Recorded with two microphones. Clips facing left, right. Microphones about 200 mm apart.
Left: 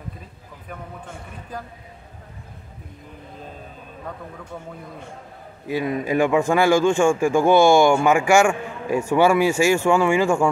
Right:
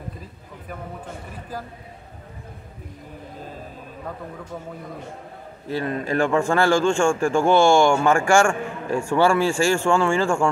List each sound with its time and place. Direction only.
5.7 s a man's voice: 15° left (ahead or behind)
8.9 s a man's voice: 15° left (ahead or behind)